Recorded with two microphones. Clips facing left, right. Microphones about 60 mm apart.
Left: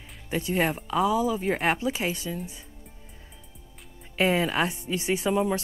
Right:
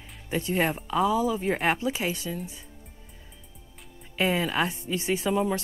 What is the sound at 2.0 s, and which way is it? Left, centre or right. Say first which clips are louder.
Speech: even; left.